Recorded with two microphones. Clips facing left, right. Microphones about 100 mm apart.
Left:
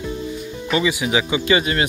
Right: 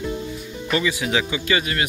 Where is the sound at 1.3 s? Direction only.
25° left (ahead or behind).